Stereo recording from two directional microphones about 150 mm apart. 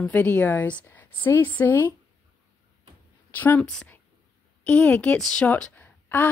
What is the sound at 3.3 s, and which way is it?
Speech, 10° left (ahead or behind).